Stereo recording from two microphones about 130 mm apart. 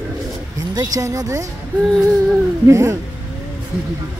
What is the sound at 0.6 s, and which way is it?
Speech, 30° right (ahead or behind).